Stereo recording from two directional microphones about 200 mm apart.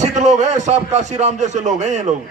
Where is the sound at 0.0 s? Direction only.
35° right (ahead or behind).